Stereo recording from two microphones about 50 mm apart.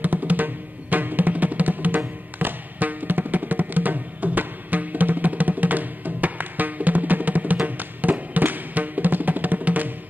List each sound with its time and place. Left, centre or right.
0.0 s music: right